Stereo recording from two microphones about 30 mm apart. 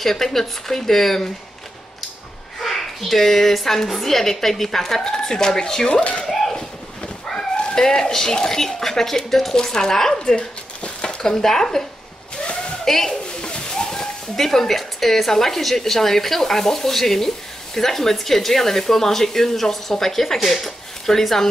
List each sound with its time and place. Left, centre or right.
0.0 s speech: centre
2.6 s speech: centre
5.9 s speech: left
6.2 s a sound: centre
7.3 s speech: left
12.8 s speech: centre
13.4 s pigeon: left
13.8 s speech: centre